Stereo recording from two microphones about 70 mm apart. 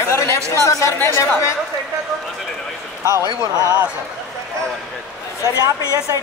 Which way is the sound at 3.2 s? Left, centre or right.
Left.